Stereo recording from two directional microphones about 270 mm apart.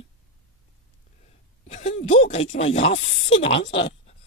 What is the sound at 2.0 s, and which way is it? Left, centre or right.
Speech, left.